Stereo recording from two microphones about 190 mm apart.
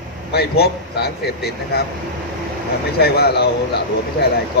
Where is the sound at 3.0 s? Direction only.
55° left (ahead or behind).